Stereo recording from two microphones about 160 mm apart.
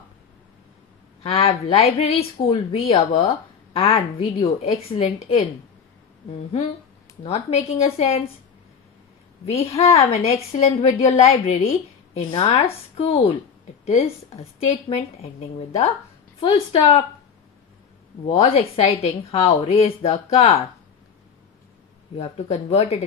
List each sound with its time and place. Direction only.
1.2 s a woman's voice: 40° left (ahead or behind)
4.4 s a woman's voice: 35° left (ahead or behind)
7.2 s a woman's voice: 40° left (ahead or behind)
9.5 s a woman's voice: 35° left (ahead or behind)
18.2 s a woman's voice: 40° left (ahead or behind)
22.1 s a woman's voice: 40° left (ahead or behind)